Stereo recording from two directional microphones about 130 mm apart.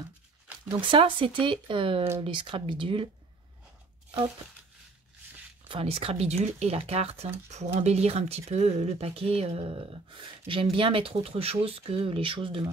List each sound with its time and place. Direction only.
0.7 s speech: 40° right (ahead or behind)
5.7 s speech: 45° right (ahead or behind)